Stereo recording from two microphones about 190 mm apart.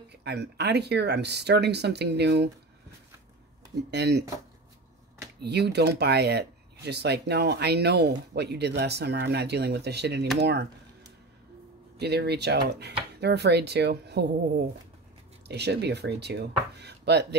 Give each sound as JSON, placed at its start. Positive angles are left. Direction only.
{"t": 0.1, "sound": "speech", "side_deg": -60}
{"t": 3.9, "sound": "speech", "side_deg": -60}
{"t": 5.4, "sound": "speech", "side_deg": -60}
{"t": 12.0, "sound": "speech", "side_deg": -60}